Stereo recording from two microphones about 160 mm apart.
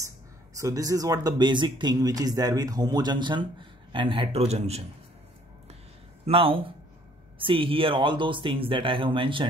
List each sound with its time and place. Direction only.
0.6 s speech: 20° right (ahead or behind); by 4.8 s 40° right (ahead or behind)
6.2 s speech: 35° right (ahead or behind)